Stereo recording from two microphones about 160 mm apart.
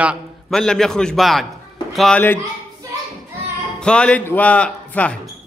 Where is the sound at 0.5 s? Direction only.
5° left (ahead or behind).